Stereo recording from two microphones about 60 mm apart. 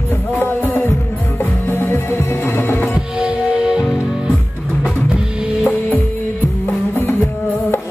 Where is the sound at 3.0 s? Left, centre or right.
Centre.